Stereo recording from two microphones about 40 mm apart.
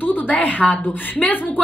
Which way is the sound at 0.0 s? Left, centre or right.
Left.